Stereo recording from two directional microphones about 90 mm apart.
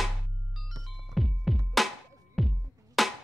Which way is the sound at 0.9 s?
Centre (ahead or behind).